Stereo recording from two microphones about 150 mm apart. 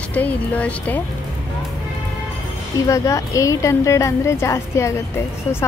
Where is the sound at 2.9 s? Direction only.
20° left (ahead or behind).